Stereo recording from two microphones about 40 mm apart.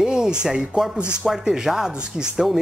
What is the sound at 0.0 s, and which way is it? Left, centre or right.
Speech, centre.